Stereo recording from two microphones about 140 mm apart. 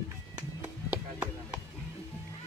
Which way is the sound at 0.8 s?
10° right (ahead or behind).